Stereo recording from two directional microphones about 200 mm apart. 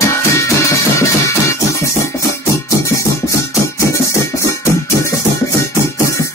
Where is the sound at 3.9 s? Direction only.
15° left (ahead or behind).